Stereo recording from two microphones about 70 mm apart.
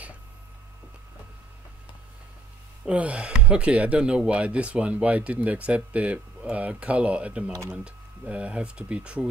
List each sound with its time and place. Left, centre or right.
2.8 s speech: centre